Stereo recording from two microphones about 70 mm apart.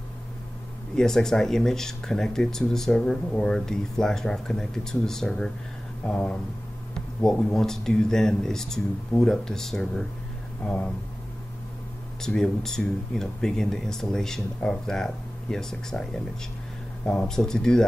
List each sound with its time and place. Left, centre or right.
0.9 s speech: centre
12.2 s speech: centre